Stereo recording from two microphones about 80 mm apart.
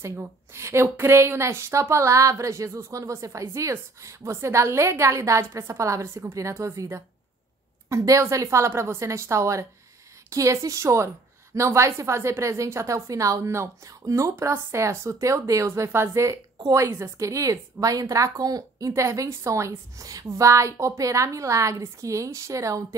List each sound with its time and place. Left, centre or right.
0.0 s a woman's voice: right